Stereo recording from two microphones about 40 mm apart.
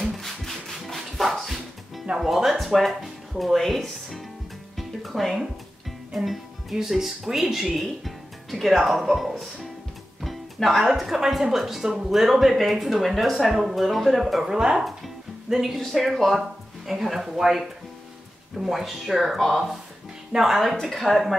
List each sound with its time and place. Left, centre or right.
0.2 s music: centre
2.1 s speech: centre
4.7 s music: centre
6.1 s speech: centre
10.2 s music: centre
10.9 s speech: centre
14.4 s speech: centre